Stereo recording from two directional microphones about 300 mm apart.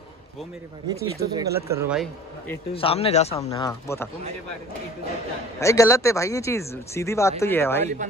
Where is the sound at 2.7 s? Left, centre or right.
Centre.